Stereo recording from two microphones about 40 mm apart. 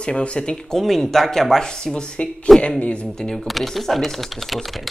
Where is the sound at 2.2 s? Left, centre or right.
Left.